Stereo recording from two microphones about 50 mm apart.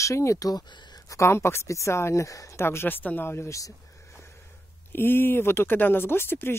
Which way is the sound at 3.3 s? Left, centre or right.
Left.